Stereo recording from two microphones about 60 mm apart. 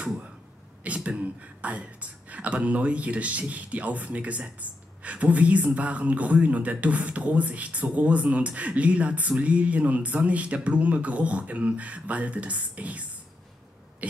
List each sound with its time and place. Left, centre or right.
0.8 s speech: right